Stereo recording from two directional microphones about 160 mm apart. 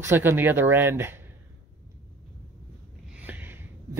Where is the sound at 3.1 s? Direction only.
10° right (ahead or behind).